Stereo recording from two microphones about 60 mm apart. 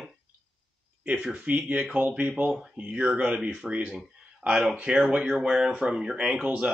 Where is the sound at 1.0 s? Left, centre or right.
Centre.